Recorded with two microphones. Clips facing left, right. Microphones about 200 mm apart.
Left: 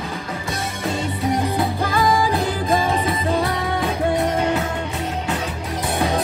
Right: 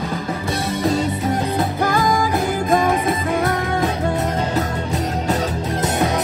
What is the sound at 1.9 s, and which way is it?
Music, 50° right (ahead or behind).